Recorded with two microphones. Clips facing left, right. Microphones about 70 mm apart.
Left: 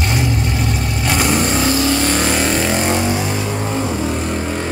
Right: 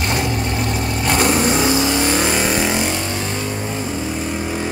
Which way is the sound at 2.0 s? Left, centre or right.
Centre.